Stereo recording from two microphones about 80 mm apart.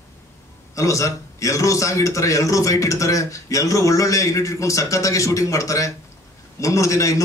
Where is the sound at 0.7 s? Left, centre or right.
Left.